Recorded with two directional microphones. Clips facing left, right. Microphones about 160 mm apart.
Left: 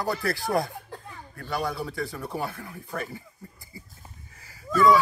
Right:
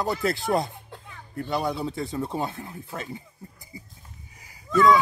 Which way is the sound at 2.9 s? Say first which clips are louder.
Left 3 dB; 20° right (ahead or behind).